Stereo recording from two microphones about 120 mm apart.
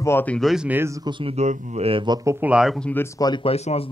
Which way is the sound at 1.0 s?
45° right (ahead or behind).